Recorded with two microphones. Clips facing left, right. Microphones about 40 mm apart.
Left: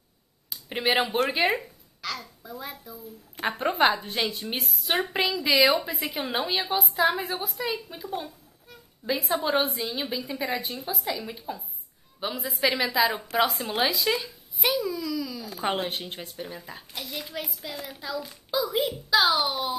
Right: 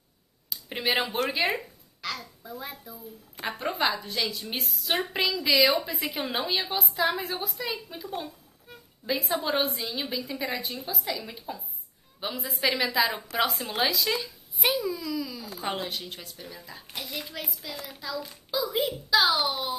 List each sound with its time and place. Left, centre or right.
0.7 s speech: centre
2.0 s a child's voice: centre
3.3 s speech: left
5.0 s a woman's voice: centre
9.3 s a woman's voice: centre
14.6 s a child's voice: centre
15.1 s a sound: centre
15.5 s speech: left
17.1 s a woman's voice: centre